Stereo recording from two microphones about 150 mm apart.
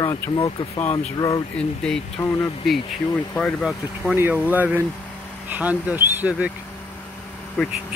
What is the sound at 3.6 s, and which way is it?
Speech, 10° right (ahead or behind).